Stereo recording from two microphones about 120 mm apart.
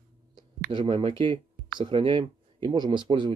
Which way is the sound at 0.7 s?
40° right (ahead or behind).